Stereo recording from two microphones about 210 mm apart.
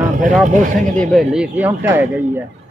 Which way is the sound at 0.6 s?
Centre (ahead or behind).